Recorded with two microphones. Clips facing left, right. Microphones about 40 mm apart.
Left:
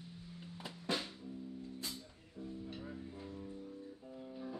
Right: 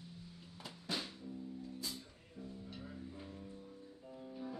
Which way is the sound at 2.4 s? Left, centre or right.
Centre.